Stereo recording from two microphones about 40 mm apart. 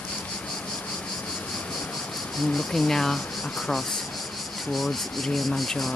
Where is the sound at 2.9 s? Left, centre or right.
Centre.